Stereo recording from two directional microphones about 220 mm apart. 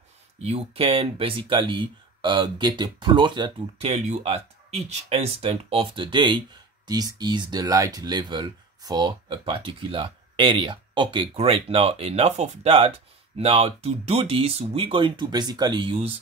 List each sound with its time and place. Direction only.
0.4 s speech: 25° right (ahead or behind)